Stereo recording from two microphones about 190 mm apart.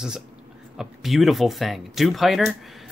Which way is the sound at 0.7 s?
Centre (ahead or behind).